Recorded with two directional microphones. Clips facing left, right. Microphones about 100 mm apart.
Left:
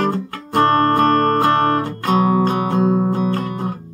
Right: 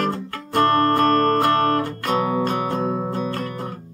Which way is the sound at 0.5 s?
25° left (ahead or behind).